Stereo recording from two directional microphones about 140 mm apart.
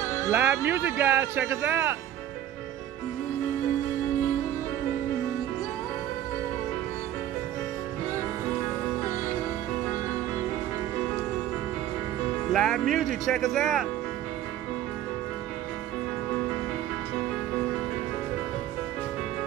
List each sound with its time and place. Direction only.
0.0 s music: 20° left (ahead or behind)
0.3 s speech: 15° right (ahead or behind)
12.5 s speech: centre (ahead or behind)